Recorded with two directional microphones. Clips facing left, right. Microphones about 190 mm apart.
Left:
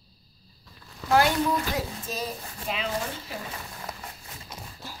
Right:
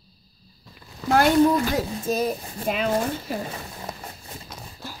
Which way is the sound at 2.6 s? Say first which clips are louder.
Right 7 dB; 50° right (ahead or behind).